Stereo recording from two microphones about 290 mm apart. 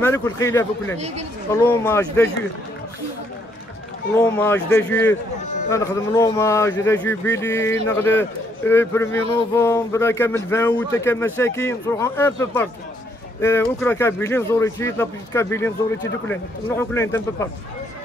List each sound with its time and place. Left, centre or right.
0.0 s a man's voice: centre
0.9 s speech: right
1.5 s a man's voice: centre
4.2 s a man's voice: centre